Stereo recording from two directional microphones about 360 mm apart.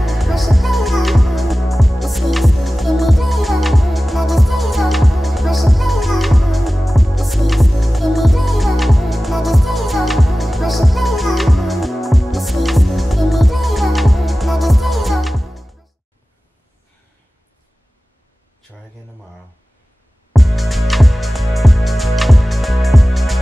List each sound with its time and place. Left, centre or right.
0.0 s music: centre
20.3 s music: centre